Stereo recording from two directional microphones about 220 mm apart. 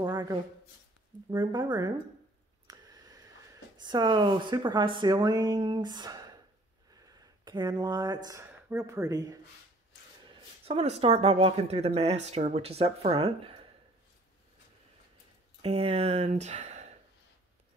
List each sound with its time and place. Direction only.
0.0 s speech: 15° right (ahead or behind)
2.6 s a sound: 15° right (ahead or behind)
3.7 s speech: 20° right (ahead or behind)
10.6 s speech: 25° right (ahead or behind)
15.6 s speech: 25° right (ahead or behind)